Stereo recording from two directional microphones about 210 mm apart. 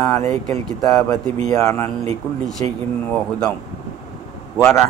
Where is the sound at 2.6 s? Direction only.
30° right (ahead or behind).